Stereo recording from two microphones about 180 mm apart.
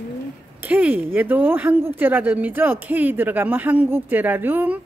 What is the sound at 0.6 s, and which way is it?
A woman's voice, 10° right (ahead or behind).